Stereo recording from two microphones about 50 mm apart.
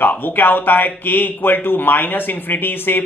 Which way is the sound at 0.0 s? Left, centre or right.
Left.